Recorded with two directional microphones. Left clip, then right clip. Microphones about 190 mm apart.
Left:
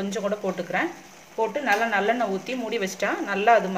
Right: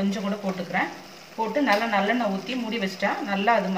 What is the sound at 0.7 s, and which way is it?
Speech, 55° left (ahead or behind).